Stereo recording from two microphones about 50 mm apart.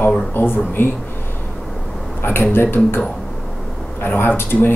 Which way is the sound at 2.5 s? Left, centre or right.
Left.